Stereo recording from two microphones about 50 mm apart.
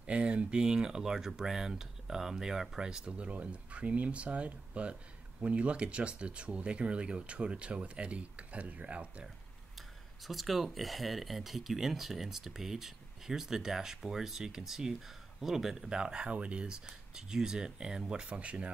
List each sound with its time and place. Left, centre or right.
0.0 s speech: right
10.2 s speech: centre; by 18.7 s right